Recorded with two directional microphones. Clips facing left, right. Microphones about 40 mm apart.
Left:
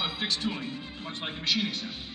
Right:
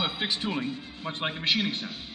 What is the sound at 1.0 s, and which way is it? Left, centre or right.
Speech, right.